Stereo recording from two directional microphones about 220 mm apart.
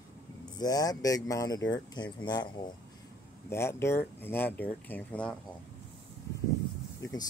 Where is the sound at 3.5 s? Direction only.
10° left (ahead or behind).